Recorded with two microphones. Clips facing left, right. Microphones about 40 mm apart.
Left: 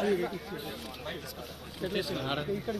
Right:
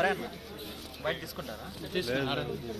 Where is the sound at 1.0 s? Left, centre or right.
Right.